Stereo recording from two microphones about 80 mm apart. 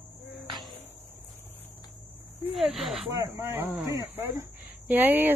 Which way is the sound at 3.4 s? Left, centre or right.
Right.